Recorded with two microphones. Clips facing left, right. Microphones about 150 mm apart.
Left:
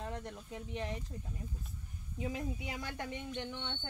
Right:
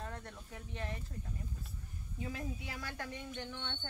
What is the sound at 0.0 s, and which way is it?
Speech, 15° left (ahead or behind).